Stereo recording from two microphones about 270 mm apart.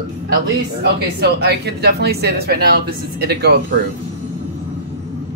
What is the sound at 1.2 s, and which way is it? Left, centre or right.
Speech, right.